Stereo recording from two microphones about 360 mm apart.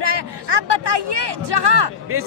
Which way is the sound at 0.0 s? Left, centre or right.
Right.